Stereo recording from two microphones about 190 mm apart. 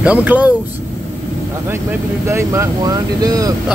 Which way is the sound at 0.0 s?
10° right (ahead or behind).